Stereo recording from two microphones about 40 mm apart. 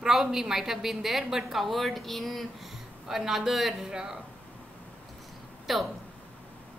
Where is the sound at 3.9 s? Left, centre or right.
Centre.